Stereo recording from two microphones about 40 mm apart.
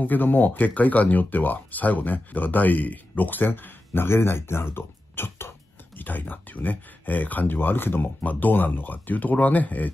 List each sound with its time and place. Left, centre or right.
0.0 s speech: left
5.9 s speech: left
7.5 s speech: left
8.3 s speech: left